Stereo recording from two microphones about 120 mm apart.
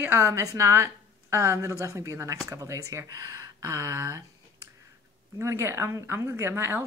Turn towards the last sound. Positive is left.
turn(degrees=-20)  # may be behind; listen again after turning